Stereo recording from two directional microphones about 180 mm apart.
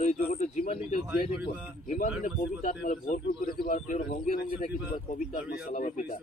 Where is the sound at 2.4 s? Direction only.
50° left (ahead or behind).